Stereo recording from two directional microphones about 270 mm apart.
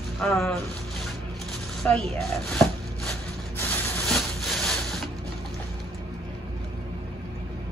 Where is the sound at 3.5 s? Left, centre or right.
Centre.